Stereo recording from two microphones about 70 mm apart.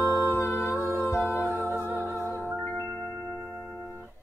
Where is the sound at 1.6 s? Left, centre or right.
Right.